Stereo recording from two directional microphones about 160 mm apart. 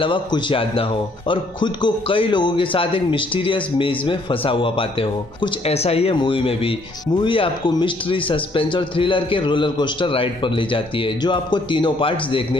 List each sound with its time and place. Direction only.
0.0 s speech: 30° left (ahead or behind)